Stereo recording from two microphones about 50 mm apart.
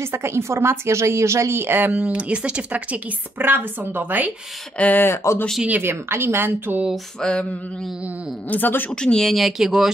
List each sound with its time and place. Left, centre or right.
0.0 s speech: right
1.9 s speech: right
3.3 s a woman's voice: right
4.7 s speech: left
5.0 s speech: left
5.8 s a woman's voice: right
7.2 s a sound: centre
8.5 s speech: left
8.9 s speech: centre
9.3 s speech: centre